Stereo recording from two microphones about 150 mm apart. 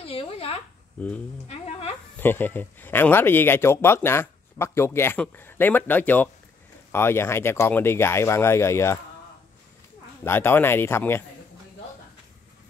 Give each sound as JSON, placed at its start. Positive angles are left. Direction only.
{"t": 0.1, "sound": "a sound", "side_deg": 40}
{"t": 2.1, "sound": "speech", "side_deg": 15}
{"t": 10.2, "sound": "speech", "side_deg": 15}